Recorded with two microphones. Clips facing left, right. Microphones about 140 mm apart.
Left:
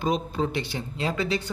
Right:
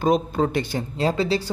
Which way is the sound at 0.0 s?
50° right (ahead or behind).